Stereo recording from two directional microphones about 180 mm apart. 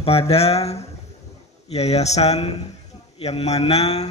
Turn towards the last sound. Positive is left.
turn(degrees=35)  # may be behind; listen again after turning